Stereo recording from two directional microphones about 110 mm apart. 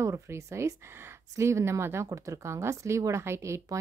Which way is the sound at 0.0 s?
25° right (ahead or behind).